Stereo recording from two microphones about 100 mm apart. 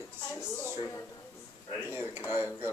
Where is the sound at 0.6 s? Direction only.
30° left (ahead or behind).